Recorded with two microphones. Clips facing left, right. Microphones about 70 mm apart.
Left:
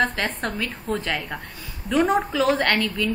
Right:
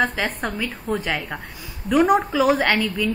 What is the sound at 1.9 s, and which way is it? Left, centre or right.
A woman's voice, centre.